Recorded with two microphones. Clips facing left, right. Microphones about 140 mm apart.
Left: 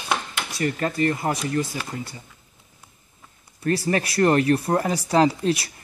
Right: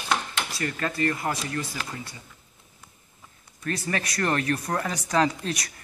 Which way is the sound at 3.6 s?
35° left (ahead or behind).